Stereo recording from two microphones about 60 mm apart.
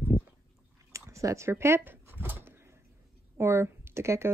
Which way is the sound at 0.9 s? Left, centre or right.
Right.